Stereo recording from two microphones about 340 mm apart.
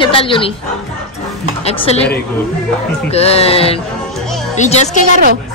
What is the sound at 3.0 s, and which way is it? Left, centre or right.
A woman's voice, centre.